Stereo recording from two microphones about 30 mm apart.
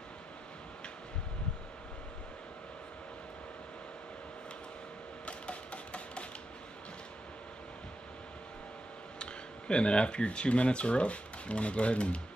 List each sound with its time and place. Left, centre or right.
5.2 s music: left
9.2 s speech: left